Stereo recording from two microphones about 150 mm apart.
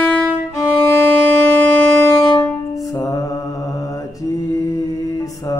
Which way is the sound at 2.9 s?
20° left (ahead or behind).